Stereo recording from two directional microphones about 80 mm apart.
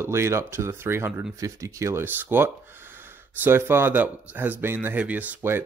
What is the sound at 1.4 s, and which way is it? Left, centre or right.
Speech, right.